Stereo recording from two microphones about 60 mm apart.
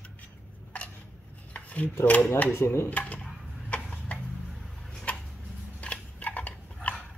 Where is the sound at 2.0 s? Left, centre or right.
Left.